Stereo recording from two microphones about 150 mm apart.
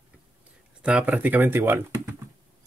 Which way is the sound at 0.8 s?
10° right (ahead or behind).